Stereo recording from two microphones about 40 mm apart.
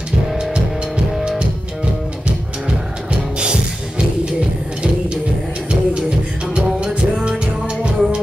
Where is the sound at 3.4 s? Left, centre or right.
Right.